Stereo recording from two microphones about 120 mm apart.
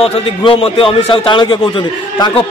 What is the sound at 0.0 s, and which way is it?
A man's voice, 50° left (ahead or behind).